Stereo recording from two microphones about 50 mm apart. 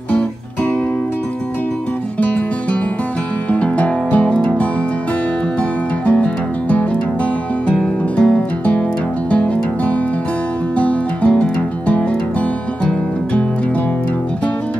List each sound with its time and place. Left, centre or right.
2.1 s music: left
3.4 s music: left
6.0 s music: left